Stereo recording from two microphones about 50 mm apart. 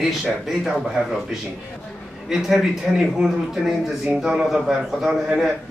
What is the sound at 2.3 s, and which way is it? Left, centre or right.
A man's voice, centre.